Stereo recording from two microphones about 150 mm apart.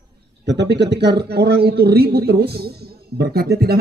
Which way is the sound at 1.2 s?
90° right.